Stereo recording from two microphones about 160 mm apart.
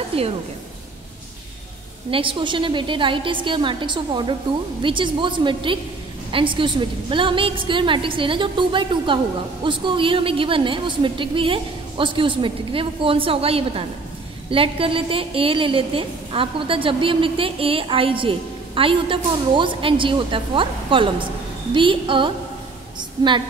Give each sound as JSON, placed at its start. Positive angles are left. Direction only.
{"t": 0.1, "sound": "a woman's voice", "side_deg": -35}
{"t": 2.0, "sound": "a woman's voice", "side_deg": -35}
{"t": 22.9, "sound": "a sound", "side_deg": -30}